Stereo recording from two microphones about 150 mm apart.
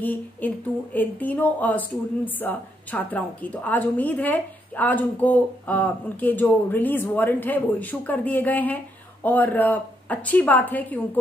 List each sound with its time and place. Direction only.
0.0 s speech: 10° left (ahead or behind)